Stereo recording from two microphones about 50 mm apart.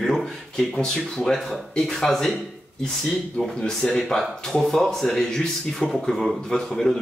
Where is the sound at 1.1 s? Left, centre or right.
Centre.